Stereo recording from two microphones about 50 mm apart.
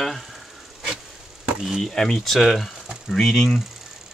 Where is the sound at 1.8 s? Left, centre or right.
Centre.